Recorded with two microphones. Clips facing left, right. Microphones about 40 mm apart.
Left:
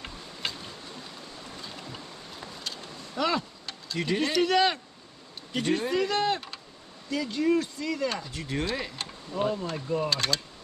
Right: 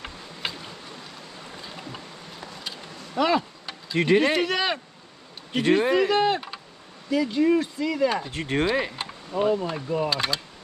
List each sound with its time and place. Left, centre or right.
0.0 s a sound: centre
1.6 s boat: centre
2.6 s insect: centre
4.4 s speech: centre
5.5 s speech: right
8.2 s speech: right; by 10.4 s centre